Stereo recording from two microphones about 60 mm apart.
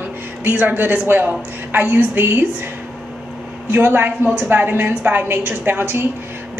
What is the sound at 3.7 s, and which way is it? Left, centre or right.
Speech, right.